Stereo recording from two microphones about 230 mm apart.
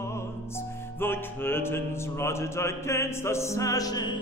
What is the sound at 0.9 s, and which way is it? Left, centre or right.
Music, centre.